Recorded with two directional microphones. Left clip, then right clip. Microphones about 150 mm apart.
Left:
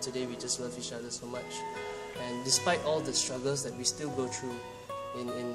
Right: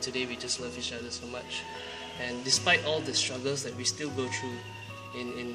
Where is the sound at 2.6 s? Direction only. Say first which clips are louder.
Right 4 dB; 15° left (ahead or behind).